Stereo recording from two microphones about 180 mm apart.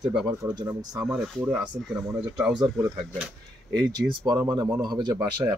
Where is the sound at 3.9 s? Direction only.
20° right (ahead or behind).